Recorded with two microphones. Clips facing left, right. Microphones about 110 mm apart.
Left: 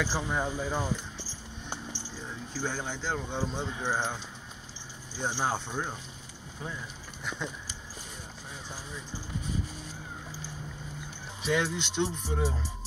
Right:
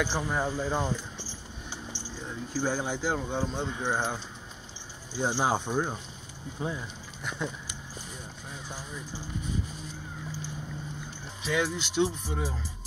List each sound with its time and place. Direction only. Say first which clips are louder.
0.0 s speech: right 2 dB; centre (ahead or behind)
2.6 s speech: right 5 dB; 10° right (ahead or behind)
5.2 s speech: right 4 dB; 10° right (ahead or behind)
7.2 s speech: right 2 dB; centre (ahead or behind)
11.4 s speech: even; 5° right (ahead or behind)